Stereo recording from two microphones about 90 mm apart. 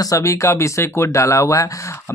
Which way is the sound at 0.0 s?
40° left (ahead or behind).